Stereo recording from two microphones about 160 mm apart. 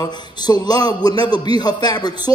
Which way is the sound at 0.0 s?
25° left (ahead or behind).